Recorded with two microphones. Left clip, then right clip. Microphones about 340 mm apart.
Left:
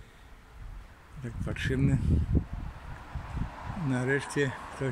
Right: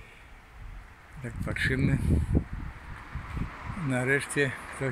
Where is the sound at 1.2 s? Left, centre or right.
Centre.